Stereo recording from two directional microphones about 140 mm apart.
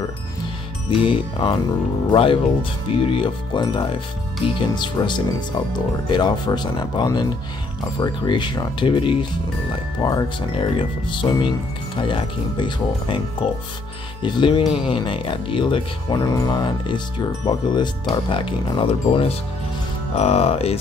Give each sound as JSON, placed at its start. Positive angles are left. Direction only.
{"t": 0.8, "sound": "speech", "side_deg": 40}